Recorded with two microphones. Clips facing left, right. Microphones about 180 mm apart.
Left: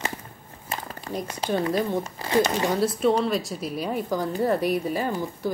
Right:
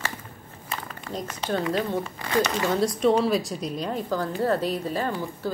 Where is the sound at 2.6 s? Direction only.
10° left (ahead or behind).